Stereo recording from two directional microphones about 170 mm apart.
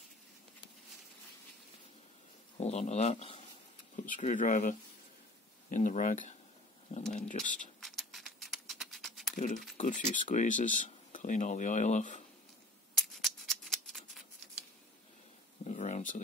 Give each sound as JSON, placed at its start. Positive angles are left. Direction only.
{"t": 2.5, "sound": "speech", "side_deg": 40}
{"t": 7.8, "sound": "patter", "side_deg": 0}
{"t": 9.3, "sound": "speech", "side_deg": 55}
{"t": 12.9, "sound": "scissors", "side_deg": 0}
{"t": 15.6, "sound": "a sound", "side_deg": 45}